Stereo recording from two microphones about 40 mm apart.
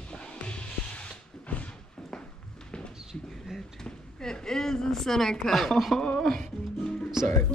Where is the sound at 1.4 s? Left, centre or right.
Left.